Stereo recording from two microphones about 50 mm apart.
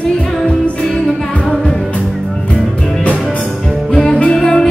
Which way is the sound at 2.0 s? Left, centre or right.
Centre.